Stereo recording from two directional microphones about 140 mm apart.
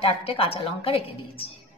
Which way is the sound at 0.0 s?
45° left (ahead or behind).